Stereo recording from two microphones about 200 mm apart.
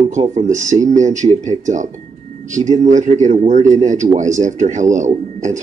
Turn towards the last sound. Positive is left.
turn(degrees=-35)  # may be behind; listen again after turning